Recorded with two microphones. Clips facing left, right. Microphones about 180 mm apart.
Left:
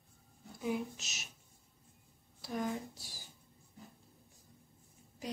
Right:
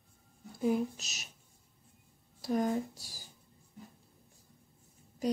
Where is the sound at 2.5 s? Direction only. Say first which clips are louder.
Right 7 dB; 40° right (ahead or behind).